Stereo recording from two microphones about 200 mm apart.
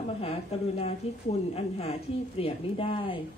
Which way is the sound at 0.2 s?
30° left (ahead or behind).